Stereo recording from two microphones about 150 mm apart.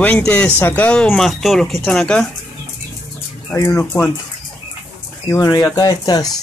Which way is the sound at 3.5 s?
20° left (ahead or behind).